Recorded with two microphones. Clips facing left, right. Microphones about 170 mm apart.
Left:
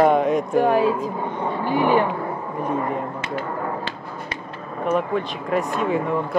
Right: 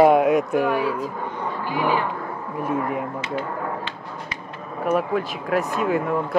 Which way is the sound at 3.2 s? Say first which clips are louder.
Left 1 dB; 45° left (ahead or behind).